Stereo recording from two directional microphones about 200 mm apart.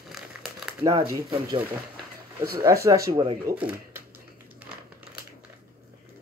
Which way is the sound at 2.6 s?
15° right (ahead or behind).